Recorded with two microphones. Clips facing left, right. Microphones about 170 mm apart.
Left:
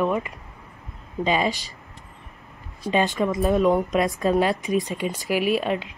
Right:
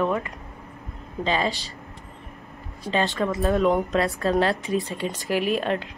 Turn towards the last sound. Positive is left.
turn(degrees=10)  # may be behind; listen again after turning